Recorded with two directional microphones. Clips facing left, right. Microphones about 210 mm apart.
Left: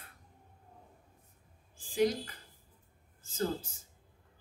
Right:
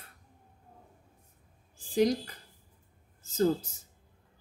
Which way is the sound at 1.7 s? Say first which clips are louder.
Right 3 dB; 40° right (ahead or behind).